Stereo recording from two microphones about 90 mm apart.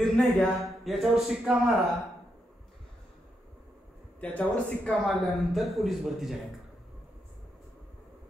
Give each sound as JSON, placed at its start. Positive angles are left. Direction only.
{"t": 0.0, "sound": "speech", "side_deg": 0}
{"t": 4.2, "sound": "speech", "side_deg": 15}
{"t": 4.8, "sound": "speech", "side_deg": 0}